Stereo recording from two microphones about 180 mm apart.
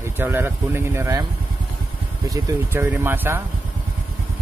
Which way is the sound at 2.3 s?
15° right (ahead or behind).